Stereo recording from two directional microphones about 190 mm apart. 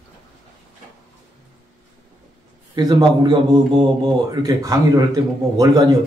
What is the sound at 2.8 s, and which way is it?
A man's voice, 20° right (ahead or behind).